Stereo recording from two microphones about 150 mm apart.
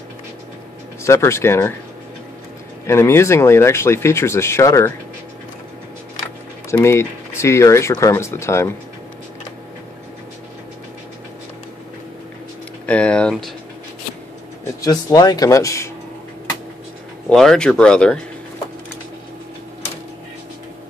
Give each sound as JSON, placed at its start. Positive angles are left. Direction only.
{"t": 1.0, "sound": "speech", "side_deg": 20}
{"t": 2.9, "sound": "speech", "side_deg": 15}
{"t": 6.7, "sound": "speech", "side_deg": 20}
{"t": 12.8, "sound": "speech", "side_deg": 10}
{"t": 14.8, "sound": "speech", "side_deg": 25}
{"t": 17.3, "sound": "speech", "side_deg": 5}